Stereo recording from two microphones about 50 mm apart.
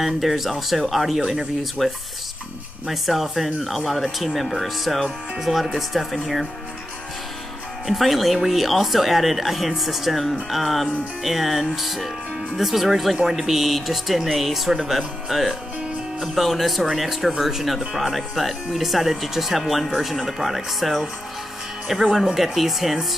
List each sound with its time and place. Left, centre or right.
0.0 s speech: centre
7.8 s speech: centre